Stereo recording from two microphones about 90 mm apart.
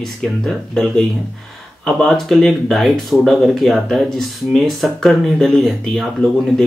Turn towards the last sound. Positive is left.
turn(degrees=0)  # may be behind; listen again after turning